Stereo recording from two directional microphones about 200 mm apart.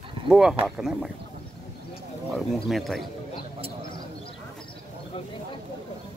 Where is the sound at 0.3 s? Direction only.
5° right (ahead or behind).